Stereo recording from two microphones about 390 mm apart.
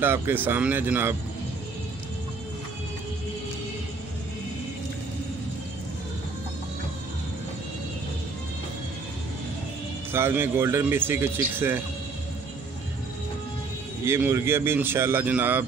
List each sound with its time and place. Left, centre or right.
0.0 s speech: centre
10.1 s speech: centre
14.0 s speech: centre